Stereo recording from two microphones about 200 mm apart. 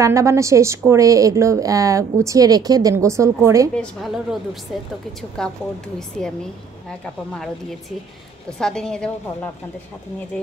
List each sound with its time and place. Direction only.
0.0 s a woman's voice: 15° right (ahead or behind)
3.7 s a woman's voice: centre (ahead or behind)
5.4 s a woman's voice: 5° left (ahead or behind)
8.5 s a woman's voice: 5° left (ahead or behind)